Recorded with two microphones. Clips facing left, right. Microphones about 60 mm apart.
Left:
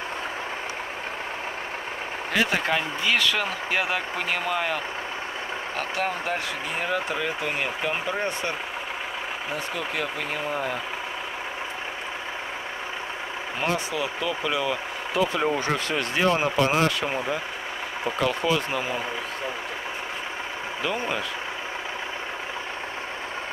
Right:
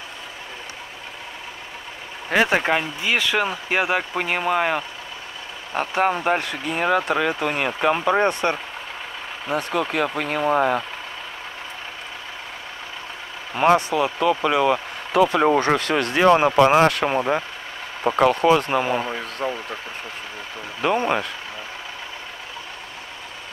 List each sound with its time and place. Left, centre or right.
2.3 s speech: right
6.0 s speech: right
6.8 s speech: right
13.6 s speech: right
18.0 s speech: right
20.8 s speech: right